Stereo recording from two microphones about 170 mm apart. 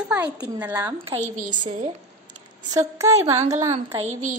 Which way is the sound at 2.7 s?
20° right (ahead or behind).